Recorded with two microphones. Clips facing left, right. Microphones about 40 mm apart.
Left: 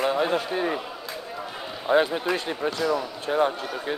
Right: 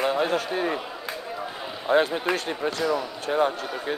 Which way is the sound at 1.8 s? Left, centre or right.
Centre.